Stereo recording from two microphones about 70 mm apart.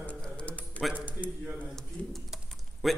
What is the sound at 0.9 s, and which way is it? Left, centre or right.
Speech, right.